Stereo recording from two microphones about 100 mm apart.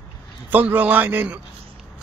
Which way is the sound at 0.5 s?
15° right (ahead or behind).